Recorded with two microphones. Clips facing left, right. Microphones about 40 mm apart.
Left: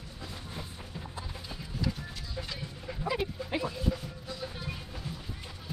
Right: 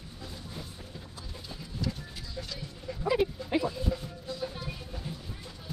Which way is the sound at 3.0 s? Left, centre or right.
Centre.